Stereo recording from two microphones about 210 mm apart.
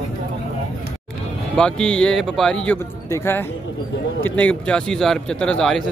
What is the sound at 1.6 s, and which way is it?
A man's voice, 5° left (ahead or behind).